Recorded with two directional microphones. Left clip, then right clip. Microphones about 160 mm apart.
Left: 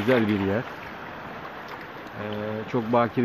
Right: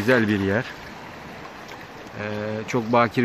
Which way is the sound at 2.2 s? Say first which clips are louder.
Right 3 dB; 15° right (ahead or behind).